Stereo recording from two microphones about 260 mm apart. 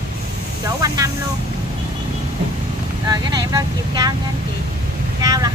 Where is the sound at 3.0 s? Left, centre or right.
Centre.